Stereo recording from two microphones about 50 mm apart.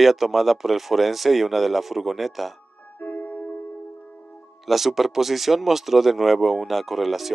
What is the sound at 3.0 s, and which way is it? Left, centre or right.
Music, left.